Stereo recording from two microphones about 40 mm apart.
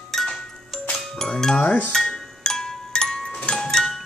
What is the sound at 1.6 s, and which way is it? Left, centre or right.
Music, left.